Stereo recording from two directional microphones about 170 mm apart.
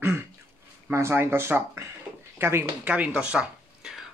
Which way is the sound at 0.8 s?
15° right (ahead or behind).